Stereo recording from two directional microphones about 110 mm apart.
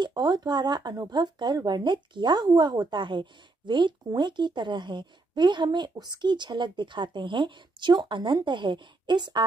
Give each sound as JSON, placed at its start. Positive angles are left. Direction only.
{"t": 0.0, "sound": "speech", "side_deg": -40}